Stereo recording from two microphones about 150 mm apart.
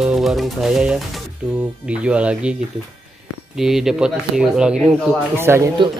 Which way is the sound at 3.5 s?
Centre (ahead or behind).